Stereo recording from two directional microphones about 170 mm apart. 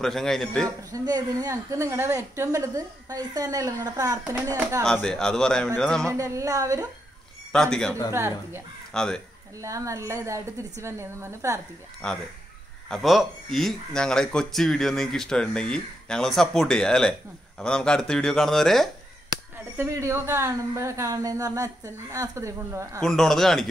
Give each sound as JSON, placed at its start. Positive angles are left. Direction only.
{"t": 0.0, "sound": "speech", "side_deg": 0}
{"t": 0.9, "sound": "a woman's voice", "side_deg": -20}
{"t": 4.8, "sound": "speech", "side_deg": 5}
{"t": 6.0, "sound": "a woman's voice", "side_deg": -20}
{"t": 7.5, "sound": "speech", "side_deg": 5}
{"t": 8.1, "sound": "speech", "side_deg": -15}
{"t": 8.9, "sound": "speech", "side_deg": 5}
{"t": 9.6, "sound": "speech", "side_deg": -20}
{"t": 12.0, "sound": "speech", "side_deg": 5}
{"t": 19.8, "sound": "speech", "side_deg": -15}
{"t": 23.0, "sound": "speech", "side_deg": 0}